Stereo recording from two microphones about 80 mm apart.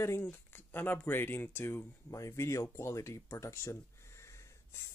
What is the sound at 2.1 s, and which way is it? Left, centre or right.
Speech, left.